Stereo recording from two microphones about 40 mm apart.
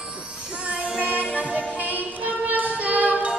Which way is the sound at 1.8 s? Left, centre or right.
Right.